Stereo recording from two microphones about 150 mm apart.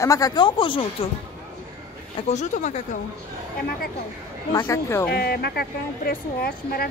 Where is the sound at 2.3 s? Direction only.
50° left (ahead or behind).